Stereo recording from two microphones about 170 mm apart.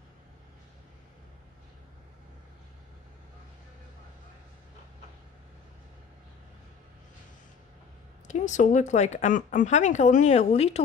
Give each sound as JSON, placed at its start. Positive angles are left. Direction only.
{"t": 8.3, "sound": "speech", "side_deg": 45}